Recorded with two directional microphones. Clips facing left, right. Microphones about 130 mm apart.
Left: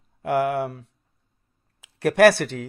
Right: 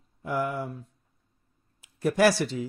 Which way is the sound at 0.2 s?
80° left.